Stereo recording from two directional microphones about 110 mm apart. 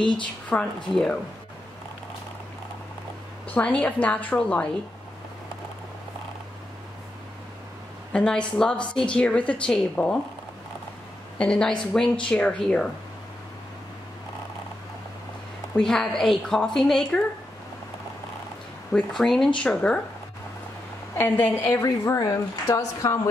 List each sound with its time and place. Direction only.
0.2 s a woman's voice: 10° left (ahead or behind)
3.4 s a woman's voice: 15° left (ahead or behind)
8.1 s a woman's voice: 10° left (ahead or behind)
11.3 s a woman's voice: 5° left (ahead or behind)
15.7 s a woman's voice: 5° left (ahead or behind)
18.9 s a woman's voice: 5° left (ahead or behind)
21.2 s speech: 20° left (ahead or behind)
21.8 s speech: 30° left (ahead or behind)